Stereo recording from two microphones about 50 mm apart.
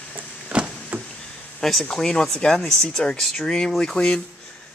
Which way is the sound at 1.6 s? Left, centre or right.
Centre.